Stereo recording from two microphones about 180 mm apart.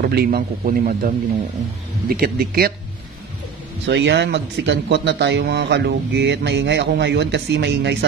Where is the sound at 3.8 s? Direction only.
70° right (ahead or behind).